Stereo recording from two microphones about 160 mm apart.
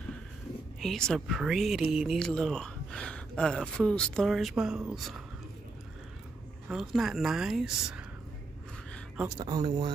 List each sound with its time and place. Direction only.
0.7 s speech: centre (ahead or behind)
6.7 s speech: centre (ahead or behind)
9.4 s speech: 25° right (ahead or behind)